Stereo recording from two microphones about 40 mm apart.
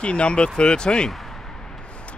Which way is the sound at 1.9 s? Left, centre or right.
Left.